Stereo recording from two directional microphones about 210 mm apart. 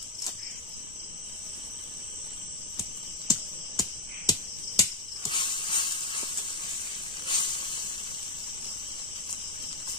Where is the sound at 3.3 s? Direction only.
15° left (ahead or behind).